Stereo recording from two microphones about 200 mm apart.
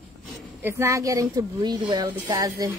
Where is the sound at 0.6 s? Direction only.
10° right (ahead or behind).